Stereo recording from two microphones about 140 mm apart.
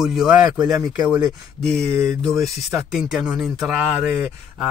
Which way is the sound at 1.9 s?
20° right (ahead or behind).